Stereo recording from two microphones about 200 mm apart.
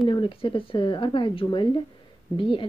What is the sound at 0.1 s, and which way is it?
Speech, 25° left (ahead or behind).